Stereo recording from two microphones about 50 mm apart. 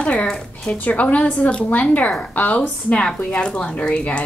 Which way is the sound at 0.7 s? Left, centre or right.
Left.